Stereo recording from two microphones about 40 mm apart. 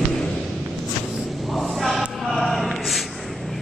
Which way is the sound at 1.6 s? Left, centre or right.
Centre.